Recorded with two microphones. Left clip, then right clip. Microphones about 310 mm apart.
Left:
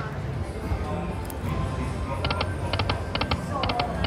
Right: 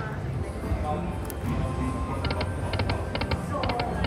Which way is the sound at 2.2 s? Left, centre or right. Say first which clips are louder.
Left 3 dB; centre.